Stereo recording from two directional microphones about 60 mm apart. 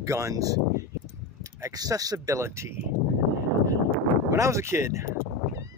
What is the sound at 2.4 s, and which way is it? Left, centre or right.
Speech, right.